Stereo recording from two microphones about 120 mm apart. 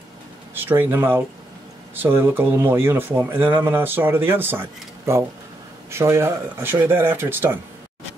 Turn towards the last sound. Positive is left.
turn(degrees=-20)  # may be behind; listen again after turning